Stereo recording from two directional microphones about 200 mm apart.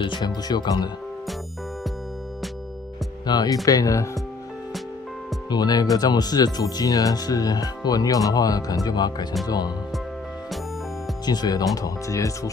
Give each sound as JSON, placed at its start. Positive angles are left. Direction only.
{"t": 0.0, "sound": "speech", "side_deg": 20}
{"t": 3.3, "sound": "speech", "side_deg": 20}
{"t": 5.5, "sound": "speech", "side_deg": 20}
{"t": 11.2, "sound": "speech", "side_deg": 20}